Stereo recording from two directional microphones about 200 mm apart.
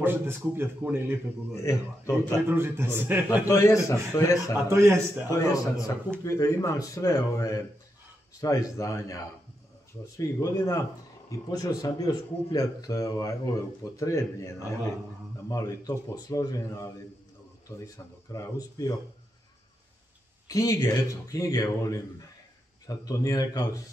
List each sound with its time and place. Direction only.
0.0 s a man's voice: 10° right (ahead or behind)
1.5 s a man's voice: 15° left (ahead or behind)
2.5 s a man's voice: 10° right (ahead or behind)
3.4 s a man's voice: 15° left (ahead or behind)
4.6 s a man's voice: 15° right (ahead or behind)
5.3 s a man's voice: 15° left (ahead or behind)
20.4 s a man's voice: 15° left (ahead or behind)